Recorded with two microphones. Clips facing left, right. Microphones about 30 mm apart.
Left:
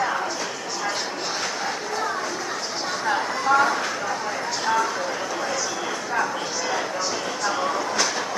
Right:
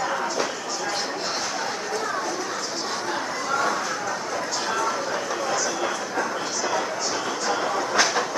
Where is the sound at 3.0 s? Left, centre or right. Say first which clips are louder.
Left 5 dB; left.